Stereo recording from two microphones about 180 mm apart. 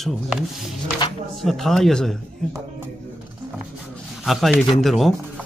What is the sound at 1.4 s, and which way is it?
Speech, 5° left (ahead or behind).